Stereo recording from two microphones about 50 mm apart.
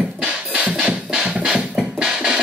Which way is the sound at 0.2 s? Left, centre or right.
Right.